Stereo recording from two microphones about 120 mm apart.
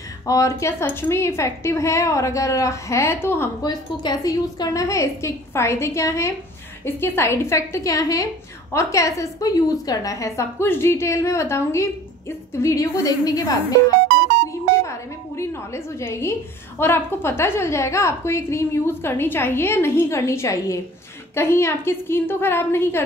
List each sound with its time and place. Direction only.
0.3 s a woman's voice: 25° left (ahead or behind)
3.6 s a woman's voice: 35° left (ahead or behind)
14.9 s a woman's voice: 25° left (ahead or behind)